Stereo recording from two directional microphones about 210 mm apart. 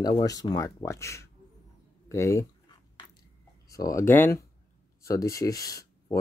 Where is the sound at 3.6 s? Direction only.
15° left (ahead or behind).